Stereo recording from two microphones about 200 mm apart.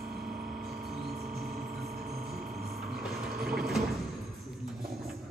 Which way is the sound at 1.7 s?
50° right (ahead or behind).